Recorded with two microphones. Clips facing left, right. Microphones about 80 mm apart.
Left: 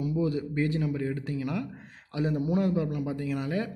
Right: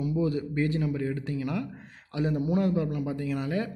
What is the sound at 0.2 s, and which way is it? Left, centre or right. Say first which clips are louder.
Speech: right 1 dB; centre.